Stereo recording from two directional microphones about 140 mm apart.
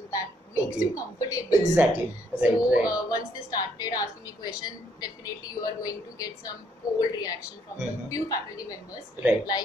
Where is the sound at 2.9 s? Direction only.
25° left (ahead or behind).